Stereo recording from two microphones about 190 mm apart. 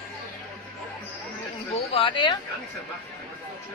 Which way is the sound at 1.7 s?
30° left (ahead or behind).